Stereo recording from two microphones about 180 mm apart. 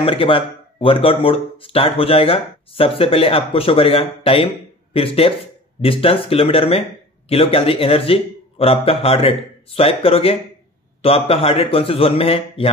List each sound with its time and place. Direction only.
0.0 s speech: 30° left (ahead or behind)